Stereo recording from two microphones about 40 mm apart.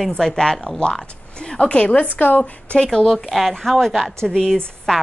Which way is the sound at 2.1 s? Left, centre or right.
Left.